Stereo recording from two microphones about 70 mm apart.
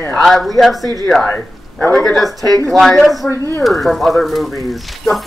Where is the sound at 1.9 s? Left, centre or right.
Centre.